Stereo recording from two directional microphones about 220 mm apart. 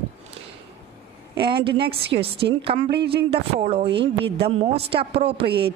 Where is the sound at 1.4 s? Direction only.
20° right (ahead or behind).